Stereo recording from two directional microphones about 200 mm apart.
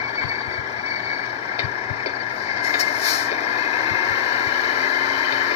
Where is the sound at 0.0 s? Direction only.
35° left (ahead or behind).